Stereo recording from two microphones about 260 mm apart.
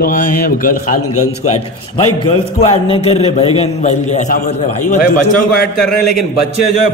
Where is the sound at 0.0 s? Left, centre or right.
Left.